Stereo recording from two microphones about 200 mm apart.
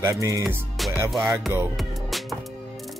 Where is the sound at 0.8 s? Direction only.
Centre (ahead or behind).